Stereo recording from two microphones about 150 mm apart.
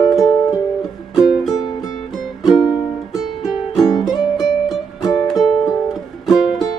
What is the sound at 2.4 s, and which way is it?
Music, 25° left (ahead or behind).